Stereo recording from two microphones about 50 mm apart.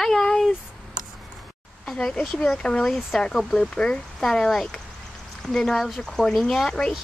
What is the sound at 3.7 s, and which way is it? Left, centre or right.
Speech, centre.